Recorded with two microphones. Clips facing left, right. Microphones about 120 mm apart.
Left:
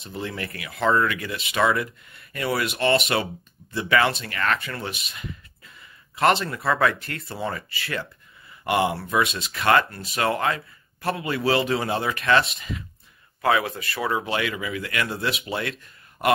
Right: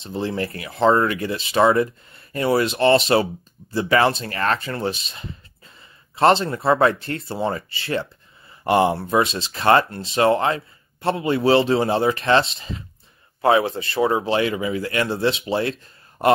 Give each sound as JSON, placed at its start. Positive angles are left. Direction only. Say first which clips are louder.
{"t": 0.0, "sound": "speech", "louder": "right 7 dB", "side_deg": -30}